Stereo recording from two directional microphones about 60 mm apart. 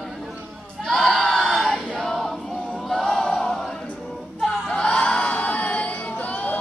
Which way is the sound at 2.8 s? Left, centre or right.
Centre.